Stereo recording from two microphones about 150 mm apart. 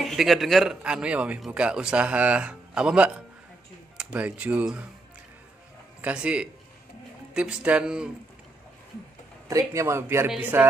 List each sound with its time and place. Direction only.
0.0 s a man's voice: centre (ahead or behind)
5.9 s a man's voice: 10° right (ahead or behind)
9.5 s a man's voice: 20° right (ahead or behind)